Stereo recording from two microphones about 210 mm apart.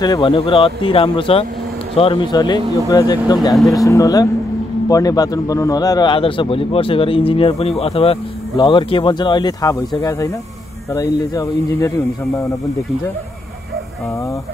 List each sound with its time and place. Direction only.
0.0 s a man's voice: 20° left (ahead or behind)